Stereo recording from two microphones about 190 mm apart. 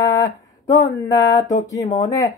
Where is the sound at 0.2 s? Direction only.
20° left (ahead or behind).